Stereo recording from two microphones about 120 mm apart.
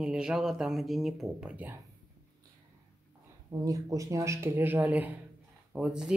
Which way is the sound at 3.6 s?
30° right (ahead or behind).